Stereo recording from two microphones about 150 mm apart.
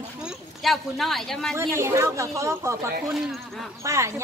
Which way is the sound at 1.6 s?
20° right (ahead or behind).